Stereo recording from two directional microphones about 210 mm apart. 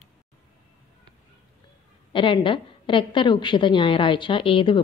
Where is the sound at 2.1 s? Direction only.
25° left (ahead or behind).